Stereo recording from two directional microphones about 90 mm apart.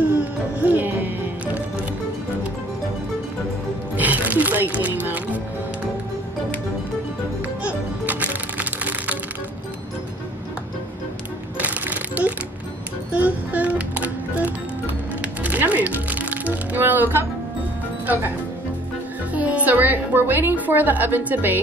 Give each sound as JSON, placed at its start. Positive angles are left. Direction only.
{"t": 0.6, "sound": "music", "side_deg": -20}
{"t": 3.9, "sound": "music", "side_deg": -20}
{"t": 7.6, "sound": "music", "side_deg": -15}
{"t": 11.5, "sound": "a sound", "side_deg": -15}
{"t": 13.1, "sound": "music", "side_deg": -15}
{"t": 15.4, "sound": "music", "side_deg": -15}
{"t": 19.3, "sound": "music", "side_deg": -15}